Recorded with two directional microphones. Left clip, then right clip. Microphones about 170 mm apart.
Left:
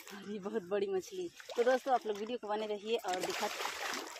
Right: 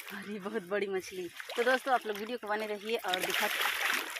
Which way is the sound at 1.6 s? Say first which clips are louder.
Right 3 dB; 20° right (ahead or behind).